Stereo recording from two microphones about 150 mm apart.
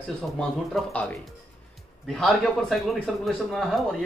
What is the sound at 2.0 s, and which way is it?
A man's voice, 5° left (ahead or behind).